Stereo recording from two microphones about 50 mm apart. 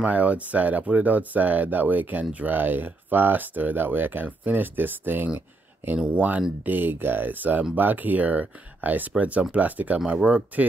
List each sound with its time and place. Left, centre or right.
0.0 s speech: right
6.1 s speech: right
9.9 s speech: right